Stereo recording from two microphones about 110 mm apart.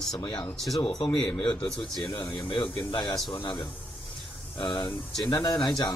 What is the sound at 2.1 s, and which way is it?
Speech, 45° left (ahead or behind).